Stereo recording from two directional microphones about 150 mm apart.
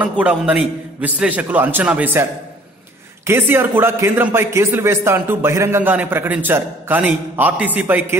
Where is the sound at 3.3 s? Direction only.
15° right (ahead or behind).